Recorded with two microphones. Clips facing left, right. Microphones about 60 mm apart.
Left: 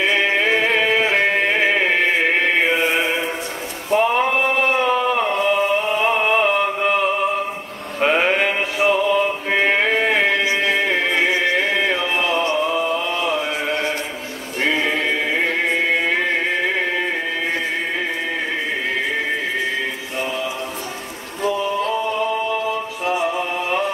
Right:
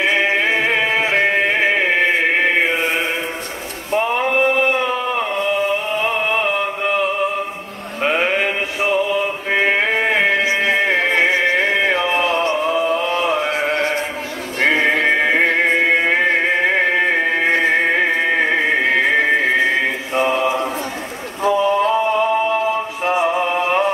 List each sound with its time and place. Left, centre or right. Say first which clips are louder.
0.0 s music: right 1 dB; centre
3.9 s a sound: left 1 dB; centre
8.0 s music: left 1 dB; centre
10.4 s music: right 2 dB; right
12.7 s chant: right 3 dB; centre; by 13.9 s right
14.6 s music: right 4 dB; right
21.4 s a sound: right 5 dB; right
21.7 s music: right 5 dB; right